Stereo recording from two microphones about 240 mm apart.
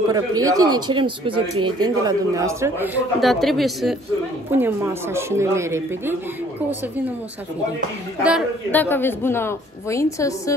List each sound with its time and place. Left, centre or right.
0.1 s a man's voice: centre
8.2 s a woman's voice: centre
8.7 s a woman's voice: centre